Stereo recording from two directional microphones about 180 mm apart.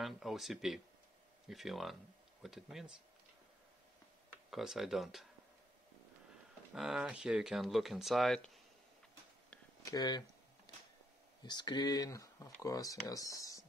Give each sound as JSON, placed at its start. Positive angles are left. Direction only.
{"t": 0.0, "sound": "speech", "side_deg": 0}
{"t": 4.5, "sound": "speech", "side_deg": 0}
{"t": 6.7, "sound": "speech", "side_deg": 0}
{"t": 9.8, "sound": "speech", "side_deg": 25}
{"t": 10.7, "sound": "a sound", "side_deg": 20}
{"t": 11.4, "sound": "speech", "side_deg": 25}